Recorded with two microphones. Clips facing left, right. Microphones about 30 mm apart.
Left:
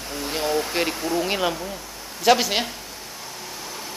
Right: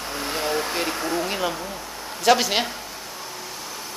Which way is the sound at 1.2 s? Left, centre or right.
Centre.